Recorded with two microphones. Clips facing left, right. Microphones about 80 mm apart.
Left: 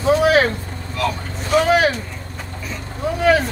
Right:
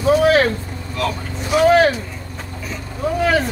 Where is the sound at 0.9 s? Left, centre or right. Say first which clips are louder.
Even; centre.